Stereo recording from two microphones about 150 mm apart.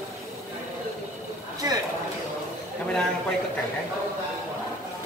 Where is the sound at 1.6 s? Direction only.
25° right (ahead or behind).